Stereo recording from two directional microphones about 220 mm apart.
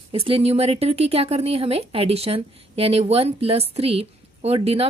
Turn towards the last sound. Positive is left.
turn(degrees=-25)  # may be behind; listen again after turning